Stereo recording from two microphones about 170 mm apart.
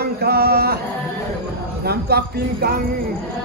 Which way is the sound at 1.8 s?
70° right (ahead or behind).